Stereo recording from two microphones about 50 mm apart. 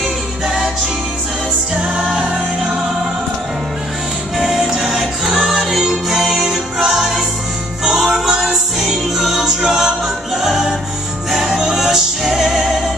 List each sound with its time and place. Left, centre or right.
1.8 s music: centre
4.4 s music: centre